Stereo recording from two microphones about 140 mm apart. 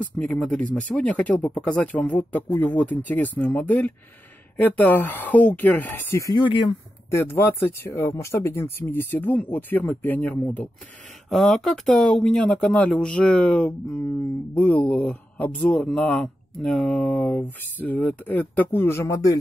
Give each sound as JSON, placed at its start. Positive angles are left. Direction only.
{"t": 0.2, "sound": "speech", "side_deg": 5}
{"t": 6.2, "sound": "speech", "side_deg": 35}
{"t": 7.1, "sound": "speech", "side_deg": 20}
{"t": 11.2, "sound": "speech", "side_deg": 0}